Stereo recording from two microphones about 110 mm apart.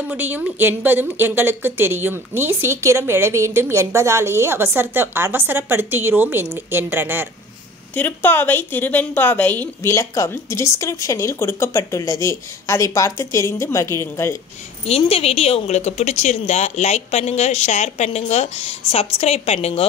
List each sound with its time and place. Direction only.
0.1 s speech: 15° right (ahead or behind)
7.9 s a woman's voice: 15° left (ahead or behind)
14.9 s a woman's voice: 65° left (ahead or behind)